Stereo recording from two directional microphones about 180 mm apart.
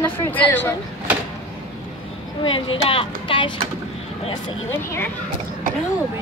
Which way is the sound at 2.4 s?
30° left (ahead or behind).